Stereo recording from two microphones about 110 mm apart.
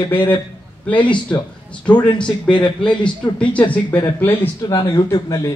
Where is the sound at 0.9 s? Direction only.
45° left (ahead or behind).